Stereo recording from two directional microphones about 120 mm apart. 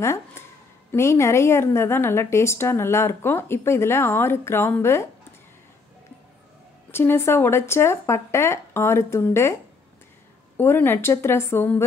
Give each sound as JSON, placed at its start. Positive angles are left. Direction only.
{"t": 0.0, "sound": "a woman's voice", "side_deg": 25}
{"t": 6.9, "sound": "a woman's voice", "side_deg": 20}
{"t": 10.6, "sound": "a woman's voice", "side_deg": 20}